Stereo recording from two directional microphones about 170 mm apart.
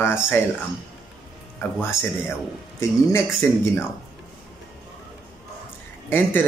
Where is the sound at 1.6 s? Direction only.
10° left (ahead or behind).